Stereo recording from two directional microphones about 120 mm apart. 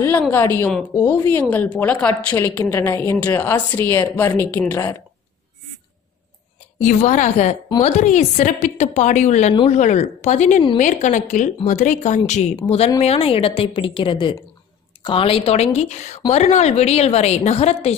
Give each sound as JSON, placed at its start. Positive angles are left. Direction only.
{"t": 0.0, "sound": "a woman's voice", "side_deg": 15}
{"t": 6.8, "sound": "a woman's voice", "side_deg": 80}
{"t": 10.8, "sound": "a woman's voice", "side_deg": 90}
{"t": 12.3, "sound": "a woman's voice", "side_deg": 75}
{"t": 12.6, "sound": "a woman's voice", "side_deg": 60}